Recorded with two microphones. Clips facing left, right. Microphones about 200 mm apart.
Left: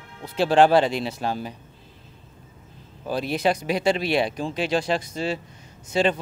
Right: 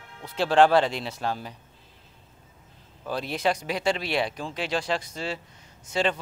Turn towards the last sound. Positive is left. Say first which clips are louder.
# left 4 dB
turn(degrees=15)  # may be behind; listen again after turning